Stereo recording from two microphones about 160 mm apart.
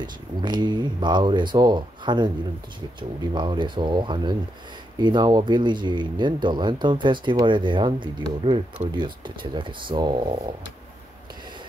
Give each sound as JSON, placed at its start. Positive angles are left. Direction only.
{"t": 0.0, "sound": "speech", "side_deg": -25}